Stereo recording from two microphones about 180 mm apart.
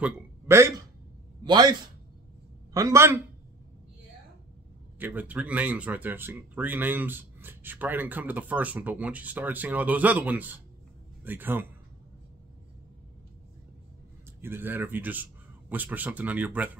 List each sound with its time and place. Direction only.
0.0 s a man's voice: 15° right (ahead or behind)
4.9 s speech: 10° right (ahead or behind)
14.4 s speech: 10° right (ahead or behind)